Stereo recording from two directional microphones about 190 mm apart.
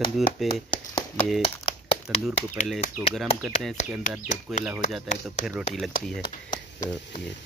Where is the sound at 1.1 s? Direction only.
Centre (ahead or behind).